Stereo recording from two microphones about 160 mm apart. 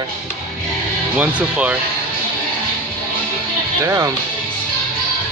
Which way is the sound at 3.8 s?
20° right (ahead or behind).